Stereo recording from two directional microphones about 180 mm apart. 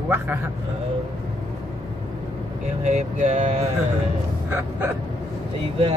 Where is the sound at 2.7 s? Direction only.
40° right (ahead or behind).